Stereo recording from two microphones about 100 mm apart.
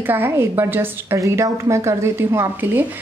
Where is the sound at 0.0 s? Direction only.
20° right (ahead or behind).